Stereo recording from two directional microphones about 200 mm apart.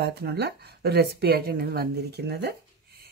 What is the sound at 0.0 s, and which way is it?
Speech, 55° right (ahead or behind).